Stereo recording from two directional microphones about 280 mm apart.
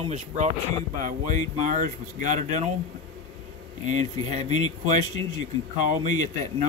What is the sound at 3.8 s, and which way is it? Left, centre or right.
Speech, right.